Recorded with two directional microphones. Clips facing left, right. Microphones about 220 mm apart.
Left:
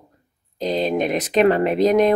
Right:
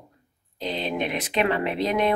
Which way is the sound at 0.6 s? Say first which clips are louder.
Left 7 dB; 40° left (ahead or behind).